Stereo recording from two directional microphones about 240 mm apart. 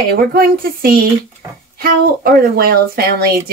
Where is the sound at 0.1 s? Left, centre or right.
Right.